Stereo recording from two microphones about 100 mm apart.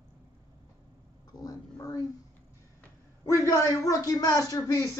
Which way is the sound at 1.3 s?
35° left (ahead or behind).